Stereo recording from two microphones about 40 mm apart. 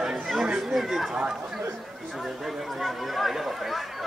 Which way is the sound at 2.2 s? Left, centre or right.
Centre.